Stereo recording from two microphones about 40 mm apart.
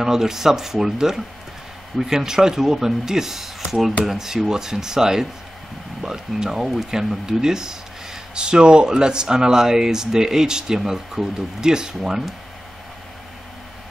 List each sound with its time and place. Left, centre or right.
0.0 s speech: centre